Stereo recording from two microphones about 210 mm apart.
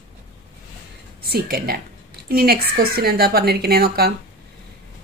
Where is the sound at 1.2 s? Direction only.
45° right (ahead or behind).